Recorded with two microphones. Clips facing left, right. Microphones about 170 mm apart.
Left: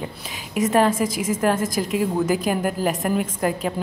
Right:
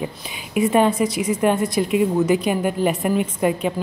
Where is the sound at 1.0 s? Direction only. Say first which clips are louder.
Right 2 dB; 45° left (ahead or behind).